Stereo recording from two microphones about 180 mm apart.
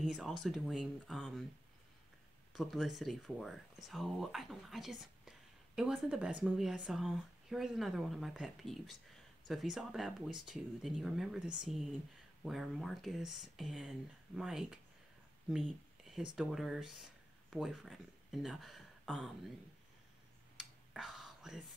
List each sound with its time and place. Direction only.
0.0 s speech: centre (ahead or behind)
2.5 s speech: centre (ahead or behind)
15.5 s a sound: centre (ahead or behind)
16.3 s speech: centre (ahead or behind)
20.5 s whispering: centre (ahead or behind)